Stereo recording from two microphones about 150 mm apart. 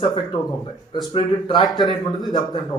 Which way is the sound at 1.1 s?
30° left (ahead or behind).